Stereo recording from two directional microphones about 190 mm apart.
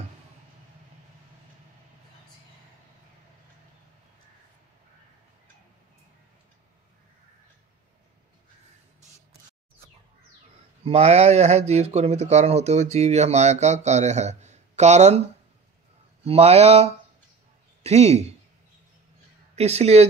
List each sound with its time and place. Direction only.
10.9 s speech: 30° right (ahead or behind)
16.3 s speech: 30° right (ahead or behind)
19.5 s speech: 35° right (ahead or behind)